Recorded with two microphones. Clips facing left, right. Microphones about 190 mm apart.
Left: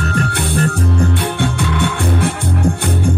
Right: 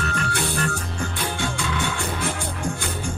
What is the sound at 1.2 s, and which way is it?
Music, 60° left (ahead or behind).